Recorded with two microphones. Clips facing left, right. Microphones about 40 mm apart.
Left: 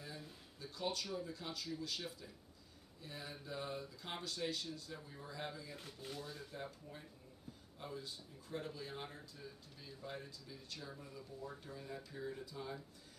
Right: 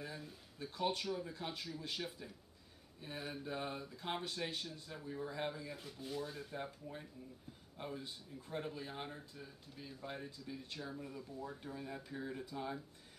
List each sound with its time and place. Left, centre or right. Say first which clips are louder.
0.6 s speech: right 4 dB; right